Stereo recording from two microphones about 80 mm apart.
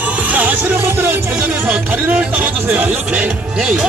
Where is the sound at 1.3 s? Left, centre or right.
Centre.